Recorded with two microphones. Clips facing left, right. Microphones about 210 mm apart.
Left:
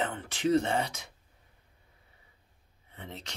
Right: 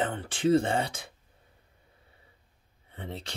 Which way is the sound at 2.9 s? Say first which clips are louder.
Right 5 dB; 30° right (ahead or behind).